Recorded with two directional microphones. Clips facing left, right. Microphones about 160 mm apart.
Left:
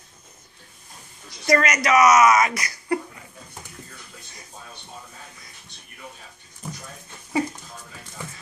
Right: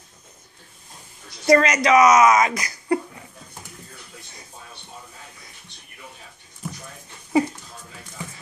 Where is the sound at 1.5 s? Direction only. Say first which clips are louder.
Right 4 dB; 25° right (ahead or behind).